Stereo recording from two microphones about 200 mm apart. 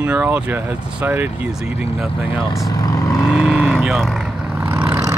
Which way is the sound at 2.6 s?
20° left (ahead or behind).